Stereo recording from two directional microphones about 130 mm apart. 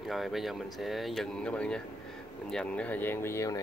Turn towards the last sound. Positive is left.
turn(degrees=20)  # may be behind; listen again after turning